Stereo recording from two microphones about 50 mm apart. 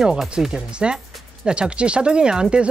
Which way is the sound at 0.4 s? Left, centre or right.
Centre.